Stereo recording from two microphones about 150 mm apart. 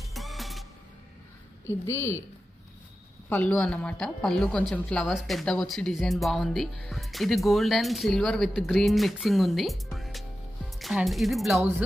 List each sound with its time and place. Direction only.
0.0 s music: centre (ahead or behind)
1.7 s a woman's voice: 15° left (ahead or behind)
3.3 s speech: 15° left (ahead or behind); by 11.6 s centre (ahead or behind)